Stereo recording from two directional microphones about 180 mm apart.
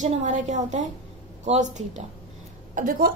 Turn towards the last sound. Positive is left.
turn(degrees=-50)  # may be behind; listen again after turning